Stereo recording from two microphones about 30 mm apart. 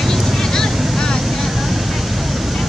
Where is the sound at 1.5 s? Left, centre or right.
Centre.